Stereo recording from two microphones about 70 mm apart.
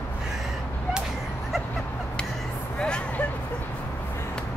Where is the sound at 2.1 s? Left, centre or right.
Centre.